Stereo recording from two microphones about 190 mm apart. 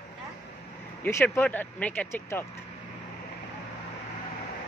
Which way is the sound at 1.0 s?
10° left (ahead or behind).